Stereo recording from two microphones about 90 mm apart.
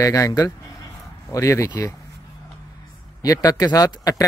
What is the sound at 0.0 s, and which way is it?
Speech, 40° left (ahead or behind).